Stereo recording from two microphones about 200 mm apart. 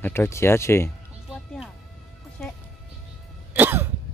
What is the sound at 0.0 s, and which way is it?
Speech, 10° left (ahead or behind).